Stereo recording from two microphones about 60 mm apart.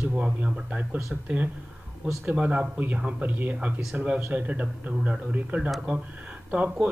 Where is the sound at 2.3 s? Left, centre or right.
Right.